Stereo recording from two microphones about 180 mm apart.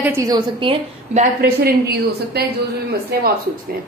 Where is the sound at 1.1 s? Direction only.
55° right (ahead or behind).